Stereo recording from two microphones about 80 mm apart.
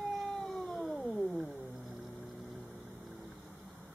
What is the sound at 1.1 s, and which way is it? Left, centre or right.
Music, centre.